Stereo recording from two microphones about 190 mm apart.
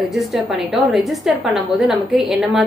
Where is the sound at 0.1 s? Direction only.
Centre (ahead or behind).